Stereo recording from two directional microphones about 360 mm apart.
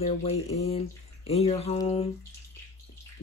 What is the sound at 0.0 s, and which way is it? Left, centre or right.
Speech, centre.